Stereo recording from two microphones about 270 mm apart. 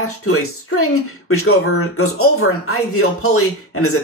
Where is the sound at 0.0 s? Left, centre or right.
Left.